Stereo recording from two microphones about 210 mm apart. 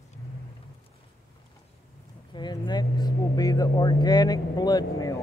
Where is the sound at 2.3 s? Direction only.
20° left (ahead or behind).